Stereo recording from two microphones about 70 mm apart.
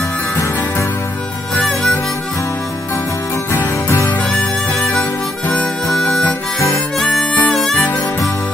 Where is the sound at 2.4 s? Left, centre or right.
Left.